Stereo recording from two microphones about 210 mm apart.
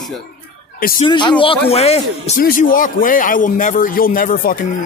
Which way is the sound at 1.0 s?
20° left (ahead or behind).